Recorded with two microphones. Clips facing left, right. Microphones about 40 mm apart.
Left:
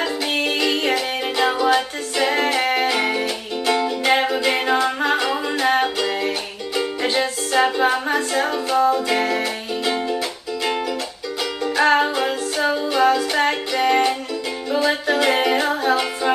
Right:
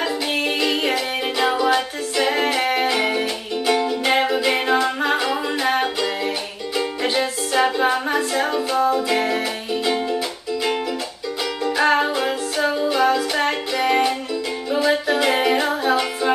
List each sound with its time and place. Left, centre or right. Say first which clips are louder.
0.0 s music: even; centre
11.6 s music: left 1 dB; centre